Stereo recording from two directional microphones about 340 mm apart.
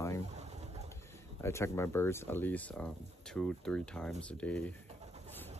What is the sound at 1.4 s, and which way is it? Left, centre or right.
Speech, centre.